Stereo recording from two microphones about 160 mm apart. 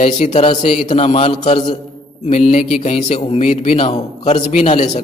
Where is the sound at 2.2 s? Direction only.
45° left (ahead or behind).